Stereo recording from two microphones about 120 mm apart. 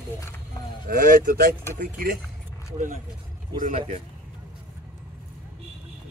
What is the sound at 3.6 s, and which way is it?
Speech, 80° right.